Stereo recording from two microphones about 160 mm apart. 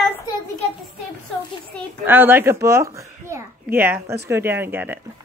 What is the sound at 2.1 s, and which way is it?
A child's voice, 15° right (ahead or behind).